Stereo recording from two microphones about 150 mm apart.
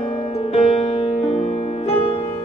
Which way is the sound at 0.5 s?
45° left (ahead or behind).